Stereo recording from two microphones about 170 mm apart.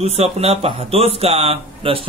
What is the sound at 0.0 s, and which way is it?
Speech, 40° right (ahead or behind).